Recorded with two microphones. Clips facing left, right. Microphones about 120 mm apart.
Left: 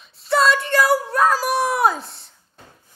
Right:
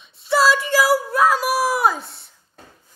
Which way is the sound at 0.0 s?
Centre (ahead or behind).